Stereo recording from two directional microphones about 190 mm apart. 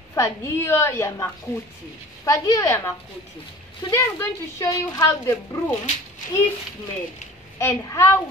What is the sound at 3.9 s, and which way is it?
A woman's voice, 15° left (ahead or behind).